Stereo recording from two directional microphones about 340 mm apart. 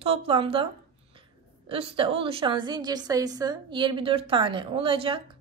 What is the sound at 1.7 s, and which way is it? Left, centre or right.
A woman's voice, centre.